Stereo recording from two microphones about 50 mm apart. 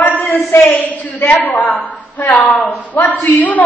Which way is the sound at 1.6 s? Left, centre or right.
Left.